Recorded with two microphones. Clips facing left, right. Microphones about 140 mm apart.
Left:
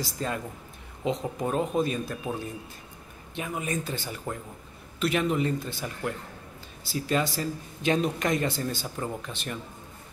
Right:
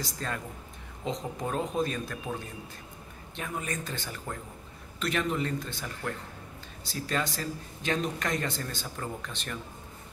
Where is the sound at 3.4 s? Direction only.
10° left (ahead or behind).